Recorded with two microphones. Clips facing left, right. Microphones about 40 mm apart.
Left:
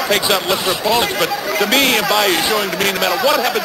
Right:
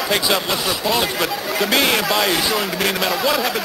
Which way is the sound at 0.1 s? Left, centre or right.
Centre.